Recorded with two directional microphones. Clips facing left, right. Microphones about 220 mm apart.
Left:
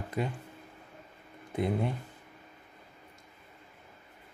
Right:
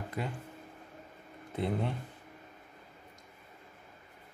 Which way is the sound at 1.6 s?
10° left (ahead or behind).